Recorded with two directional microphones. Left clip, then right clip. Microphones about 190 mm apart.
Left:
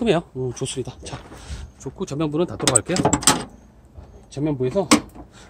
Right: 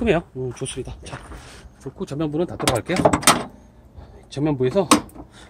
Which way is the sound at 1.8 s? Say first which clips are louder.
Left 1 dB; 10° left (ahead or behind).